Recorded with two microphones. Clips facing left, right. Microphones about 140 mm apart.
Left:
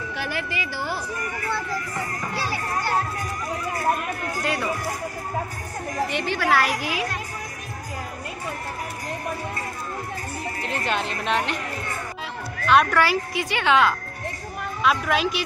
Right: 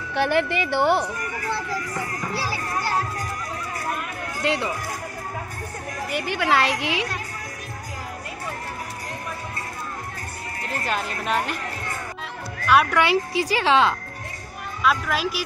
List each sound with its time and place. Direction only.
0.1 s a woman's voice: 65° right (ahead or behind)
4.4 s speech: 20° right (ahead or behind)
6.0 s a woman's voice: 10° right (ahead or behind)
6.4 s a woman's voice: 25° right (ahead or behind)
10.7 s a woman's voice: centre (ahead or behind)
12.6 s speech: 5° right (ahead or behind)
13.0 s a woman's voice: 25° right (ahead or behind)
14.8 s a woman's voice: centre (ahead or behind)